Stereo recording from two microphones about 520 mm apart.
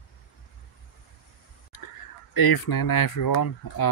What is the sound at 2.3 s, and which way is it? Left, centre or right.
Speech, left.